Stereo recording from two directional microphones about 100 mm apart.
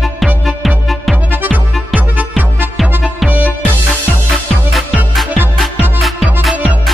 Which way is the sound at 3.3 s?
15° right (ahead or behind).